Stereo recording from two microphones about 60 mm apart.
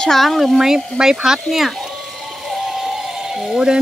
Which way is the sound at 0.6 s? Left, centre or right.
Centre.